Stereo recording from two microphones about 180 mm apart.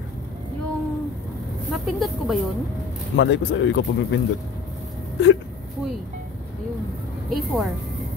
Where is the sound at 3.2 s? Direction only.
85° left.